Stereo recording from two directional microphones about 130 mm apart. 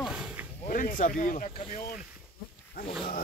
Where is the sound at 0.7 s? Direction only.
90° left.